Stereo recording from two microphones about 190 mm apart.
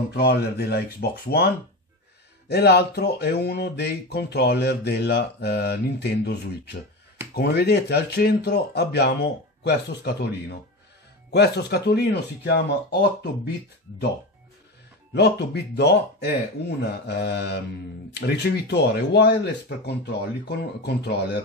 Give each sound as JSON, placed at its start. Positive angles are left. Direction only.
{"t": 0.1, "sound": "speech", "side_deg": 55}
{"t": 15.1, "sound": "speech", "side_deg": 60}